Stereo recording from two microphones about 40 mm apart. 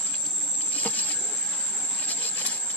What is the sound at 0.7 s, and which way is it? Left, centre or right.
Insect, left.